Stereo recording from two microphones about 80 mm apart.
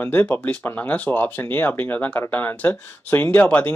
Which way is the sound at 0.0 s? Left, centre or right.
Left.